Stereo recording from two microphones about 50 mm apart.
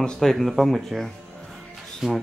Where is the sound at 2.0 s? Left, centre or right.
Centre.